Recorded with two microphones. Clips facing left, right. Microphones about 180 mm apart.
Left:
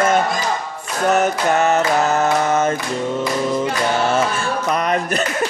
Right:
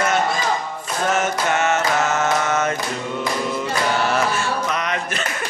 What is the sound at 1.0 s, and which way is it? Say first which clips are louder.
Mantra: left 5 dB; 35° left (ahead or behind).